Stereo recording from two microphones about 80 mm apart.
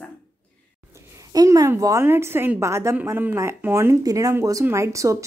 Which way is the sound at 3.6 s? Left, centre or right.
Right.